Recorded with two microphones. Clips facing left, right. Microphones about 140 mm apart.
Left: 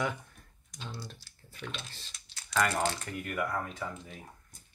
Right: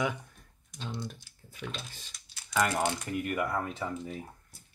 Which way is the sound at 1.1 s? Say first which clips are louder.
Right 1 dB; 15° right (ahead or behind).